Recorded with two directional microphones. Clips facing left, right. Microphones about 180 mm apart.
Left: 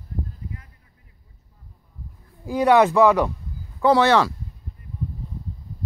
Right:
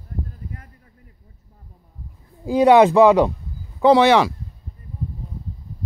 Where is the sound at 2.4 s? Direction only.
25° right (ahead or behind).